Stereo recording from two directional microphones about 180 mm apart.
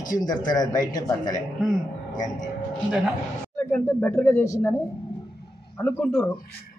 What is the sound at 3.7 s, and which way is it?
Speech, 5° left (ahead or behind).